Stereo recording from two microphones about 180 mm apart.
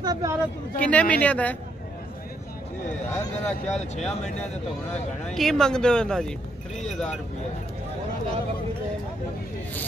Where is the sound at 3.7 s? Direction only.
40° left (ahead or behind).